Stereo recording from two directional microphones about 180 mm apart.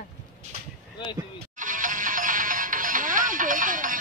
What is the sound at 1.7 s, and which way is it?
Music, 45° right (ahead or behind).